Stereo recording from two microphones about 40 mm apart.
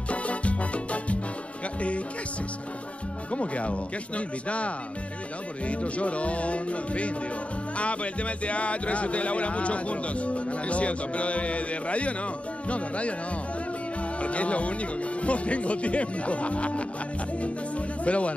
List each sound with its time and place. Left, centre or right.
0.1 s salsa music: left
3.3 s speech: left
14.2 s speech: left